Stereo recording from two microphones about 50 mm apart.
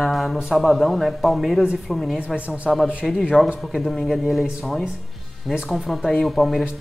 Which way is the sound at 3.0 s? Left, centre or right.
Centre.